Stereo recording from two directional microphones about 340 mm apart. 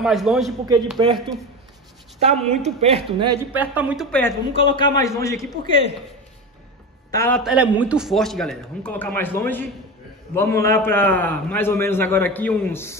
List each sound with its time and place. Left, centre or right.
0.0 s a man's voice: centre
2.1 s a woman's voice: centre
4.6 s a man's voice: centre
7.1 s a man's voice: centre